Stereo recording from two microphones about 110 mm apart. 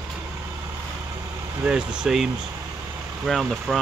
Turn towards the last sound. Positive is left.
turn(degrees=0)  # may be behind; listen again after turning